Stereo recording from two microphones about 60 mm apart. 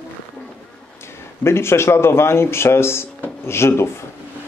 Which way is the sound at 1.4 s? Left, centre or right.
Left.